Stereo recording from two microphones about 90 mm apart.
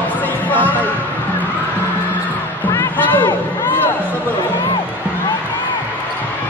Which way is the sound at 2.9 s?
20° left (ahead or behind).